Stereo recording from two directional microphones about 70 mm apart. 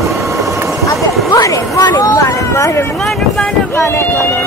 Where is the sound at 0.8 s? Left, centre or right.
Left.